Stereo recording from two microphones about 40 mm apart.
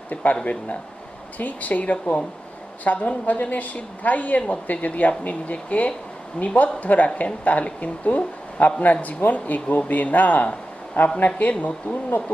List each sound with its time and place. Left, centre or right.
0.1 s speech: left
1.4 s speech: left